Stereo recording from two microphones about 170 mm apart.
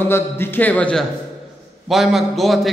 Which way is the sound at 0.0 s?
15° left (ahead or behind).